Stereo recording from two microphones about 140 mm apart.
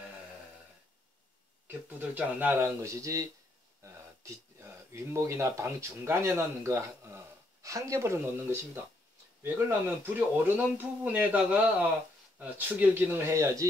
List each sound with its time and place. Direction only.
1.7 s speech: 10° right (ahead or behind)